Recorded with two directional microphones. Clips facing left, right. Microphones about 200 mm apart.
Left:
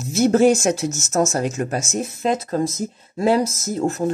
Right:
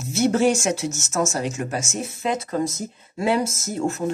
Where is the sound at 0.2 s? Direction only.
40° left (ahead or behind).